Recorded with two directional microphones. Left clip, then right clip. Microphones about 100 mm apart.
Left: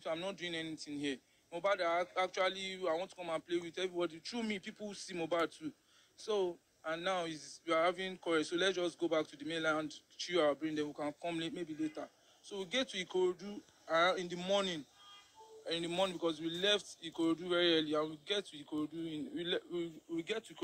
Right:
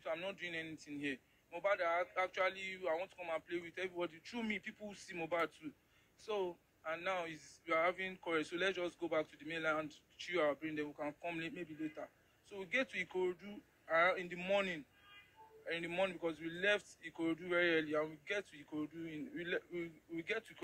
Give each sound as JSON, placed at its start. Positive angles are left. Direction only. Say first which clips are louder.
{"t": 0.0, "sound": "speech", "louder": "left 3 dB", "side_deg": 35}